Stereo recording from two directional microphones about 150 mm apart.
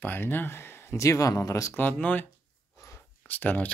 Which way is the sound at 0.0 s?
15° left (ahead or behind).